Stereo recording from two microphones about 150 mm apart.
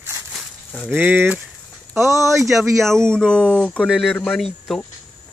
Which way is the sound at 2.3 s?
Centre (ahead or behind).